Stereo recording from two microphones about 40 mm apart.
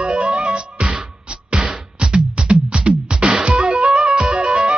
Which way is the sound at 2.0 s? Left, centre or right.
Right.